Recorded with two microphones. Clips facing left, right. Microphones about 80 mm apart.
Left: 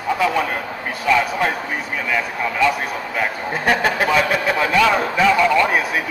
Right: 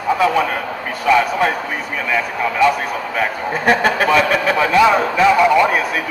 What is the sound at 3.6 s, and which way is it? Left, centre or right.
Speech, centre.